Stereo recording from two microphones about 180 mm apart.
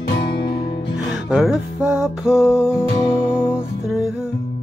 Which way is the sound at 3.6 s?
Centre (ahead or behind).